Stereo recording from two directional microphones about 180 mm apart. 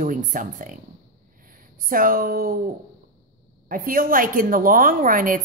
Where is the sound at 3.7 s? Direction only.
50° right (ahead or behind).